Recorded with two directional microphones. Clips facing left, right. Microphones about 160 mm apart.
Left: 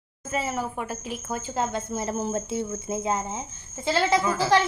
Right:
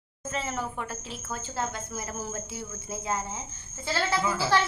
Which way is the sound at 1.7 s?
25° left (ahead or behind).